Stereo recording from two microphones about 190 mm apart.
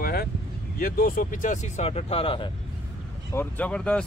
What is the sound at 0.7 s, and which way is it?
Speech, 50° left (ahead or behind).